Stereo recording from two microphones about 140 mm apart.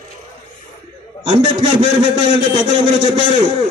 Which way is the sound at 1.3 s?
35° right (ahead or behind).